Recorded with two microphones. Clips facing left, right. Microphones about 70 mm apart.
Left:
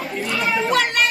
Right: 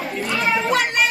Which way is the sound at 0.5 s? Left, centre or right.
Centre.